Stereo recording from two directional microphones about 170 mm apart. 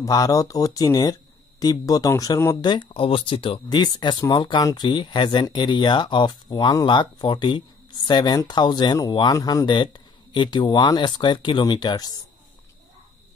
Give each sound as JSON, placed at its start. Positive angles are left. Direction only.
{"t": 0.0, "sound": "speech", "side_deg": 20}